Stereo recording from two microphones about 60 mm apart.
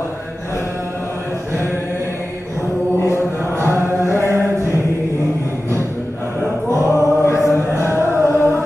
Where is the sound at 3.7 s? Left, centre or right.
Right.